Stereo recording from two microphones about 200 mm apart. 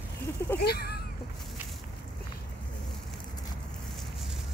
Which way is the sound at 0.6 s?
55° left (ahead or behind).